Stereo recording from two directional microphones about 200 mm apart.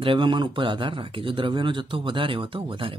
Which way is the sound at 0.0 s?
25° right (ahead or behind).